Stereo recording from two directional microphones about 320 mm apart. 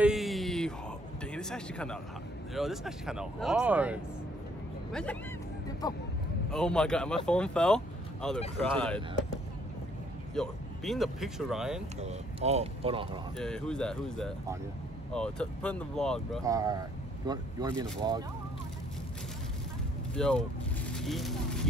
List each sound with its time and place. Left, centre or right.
0.0 s a sound: centre
2.5 s speech: centre
5.8 s speech: centre
10.3 s speech: centre
12.0 s speech: centre
13.4 s speech: centre
16.4 s speech: centre
20.2 s speech: centre